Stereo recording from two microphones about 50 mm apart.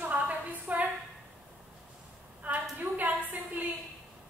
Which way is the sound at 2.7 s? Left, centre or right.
Right.